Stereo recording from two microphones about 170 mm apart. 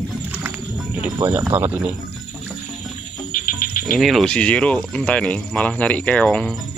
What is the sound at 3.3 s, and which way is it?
Cricket, 55° left (ahead or behind).